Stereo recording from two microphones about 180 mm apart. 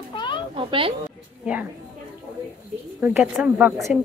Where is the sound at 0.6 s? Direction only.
30° right (ahead or behind).